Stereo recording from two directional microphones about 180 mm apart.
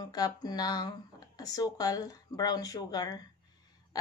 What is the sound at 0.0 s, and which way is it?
Speech, 20° left (ahead or behind).